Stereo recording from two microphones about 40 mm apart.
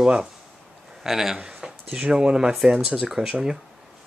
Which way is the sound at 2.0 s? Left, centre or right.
Right.